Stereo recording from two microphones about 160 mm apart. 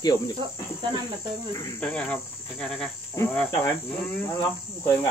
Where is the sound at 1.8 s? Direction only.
5° left (ahead or behind).